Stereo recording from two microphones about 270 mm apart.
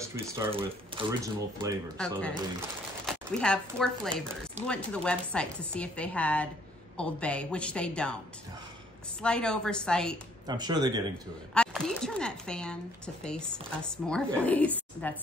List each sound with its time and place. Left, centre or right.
0.9 s speech: centre
2.0 s speech: centre
9.2 s speech: centre
10.4 s speech: centre
11.5 s speech: centre